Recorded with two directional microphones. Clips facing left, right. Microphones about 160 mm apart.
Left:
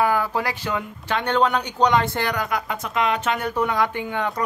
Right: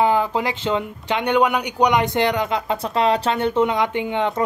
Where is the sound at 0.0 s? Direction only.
20° right (ahead or behind).